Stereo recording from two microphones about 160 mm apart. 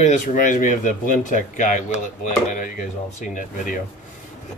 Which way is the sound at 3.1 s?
55° left (ahead or behind).